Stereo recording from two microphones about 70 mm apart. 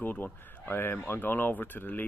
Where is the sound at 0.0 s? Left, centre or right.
Left.